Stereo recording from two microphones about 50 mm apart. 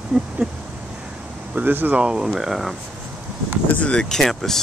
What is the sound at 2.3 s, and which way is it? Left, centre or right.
Speech, centre.